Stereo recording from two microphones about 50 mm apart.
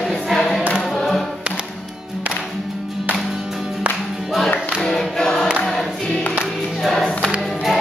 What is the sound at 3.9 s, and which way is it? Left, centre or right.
Music, right.